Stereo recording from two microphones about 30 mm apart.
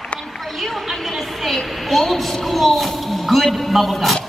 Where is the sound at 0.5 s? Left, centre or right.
Centre.